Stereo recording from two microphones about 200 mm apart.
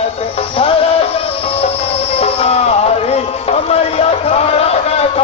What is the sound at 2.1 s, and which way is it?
Music, 30° left (ahead or behind).